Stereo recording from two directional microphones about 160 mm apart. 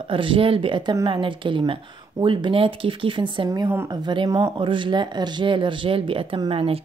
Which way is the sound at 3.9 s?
30° right (ahead or behind).